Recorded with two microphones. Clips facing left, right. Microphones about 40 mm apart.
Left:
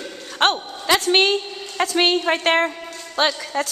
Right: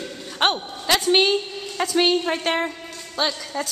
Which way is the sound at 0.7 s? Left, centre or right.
Centre.